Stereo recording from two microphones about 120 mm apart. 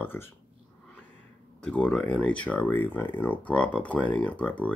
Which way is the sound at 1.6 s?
10° left (ahead or behind).